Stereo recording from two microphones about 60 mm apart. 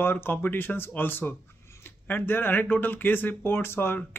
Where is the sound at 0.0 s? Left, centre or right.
Left.